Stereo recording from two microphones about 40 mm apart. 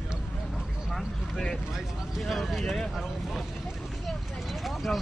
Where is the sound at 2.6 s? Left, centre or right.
Centre.